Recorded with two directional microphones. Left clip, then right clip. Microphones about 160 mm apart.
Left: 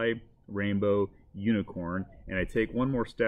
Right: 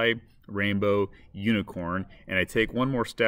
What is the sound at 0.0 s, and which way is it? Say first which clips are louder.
Speech: right 5 dB; 15° right (ahead or behind).